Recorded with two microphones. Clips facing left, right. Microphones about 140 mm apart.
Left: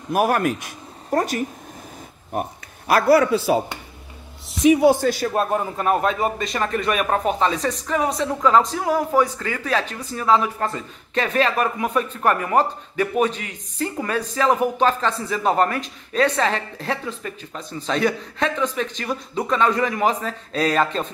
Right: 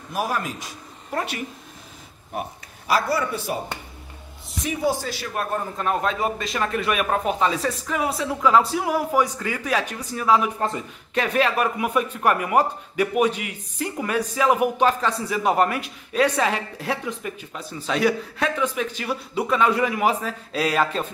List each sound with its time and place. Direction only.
0.1 s a man's voice: 60° left (ahead or behind)
1.1 s speech: 40° left (ahead or behind)
2.9 s speech: 65° left (ahead or behind); by 3.6 s 90° left
4.5 s a man's voice: 80° left
5.5 s a man's voice: 5° left (ahead or behind)